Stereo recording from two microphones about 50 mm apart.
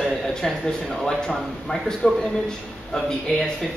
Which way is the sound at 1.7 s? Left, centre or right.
Centre.